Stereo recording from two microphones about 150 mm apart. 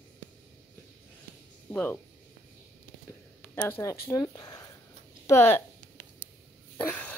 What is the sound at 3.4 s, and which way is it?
Speech, 10° left (ahead or behind).